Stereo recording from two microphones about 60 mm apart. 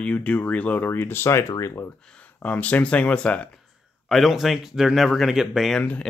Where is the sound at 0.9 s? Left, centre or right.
Left.